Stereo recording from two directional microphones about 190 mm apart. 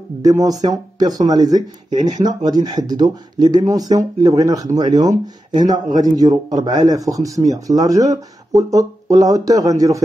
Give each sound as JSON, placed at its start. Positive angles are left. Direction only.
{"t": 0.2, "sound": "speech", "side_deg": -20}